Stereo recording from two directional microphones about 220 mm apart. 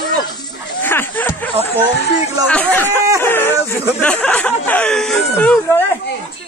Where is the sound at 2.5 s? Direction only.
5° left (ahead or behind).